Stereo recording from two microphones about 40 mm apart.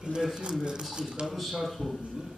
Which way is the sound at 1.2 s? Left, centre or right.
Centre.